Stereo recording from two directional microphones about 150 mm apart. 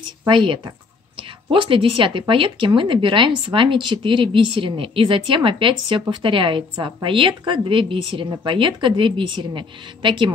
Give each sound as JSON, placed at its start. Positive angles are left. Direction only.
{"t": 0.3, "sound": "speech", "side_deg": -30}